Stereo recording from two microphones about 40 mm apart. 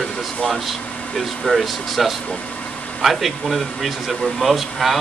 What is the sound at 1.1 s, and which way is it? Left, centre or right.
Speech, centre.